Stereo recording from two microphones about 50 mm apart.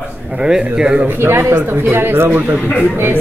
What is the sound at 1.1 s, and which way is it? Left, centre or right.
Speech, right.